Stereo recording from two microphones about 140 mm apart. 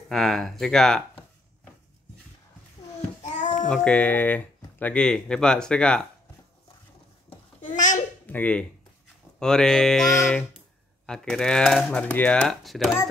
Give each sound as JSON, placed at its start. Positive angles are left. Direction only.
{"t": 0.1, "sound": "speech", "side_deg": 0}
{"t": 3.3, "sound": "child singing", "side_deg": 55}
{"t": 3.6, "sound": "speech", "side_deg": 5}
{"t": 7.6, "sound": "babbling", "side_deg": 60}
{"t": 8.3, "sound": "speech", "side_deg": 10}